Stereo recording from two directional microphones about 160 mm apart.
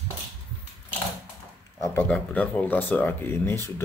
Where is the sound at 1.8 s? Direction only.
15° left (ahead or behind).